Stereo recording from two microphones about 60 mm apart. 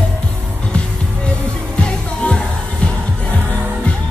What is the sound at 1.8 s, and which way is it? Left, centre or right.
Music, centre.